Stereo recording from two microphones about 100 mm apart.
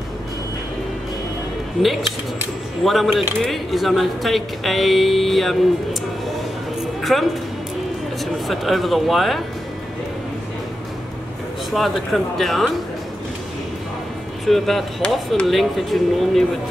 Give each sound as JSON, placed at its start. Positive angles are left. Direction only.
{"t": 1.8, "sound": "speech", "side_deg": 0}
{"t": 7.0, "sound": "a sound", "side_deg": 0}
{"t": 8.5, "sound": "speech", "side_deg": 0}
{"t": 11.7, "sound": "speech", "side_deg": 0}
{"t": 14.4, "sound": "speech", "side_deg": 0}